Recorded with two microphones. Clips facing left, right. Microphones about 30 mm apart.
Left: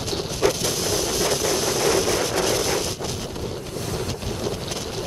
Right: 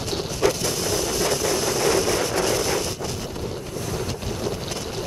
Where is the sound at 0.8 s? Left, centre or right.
Left.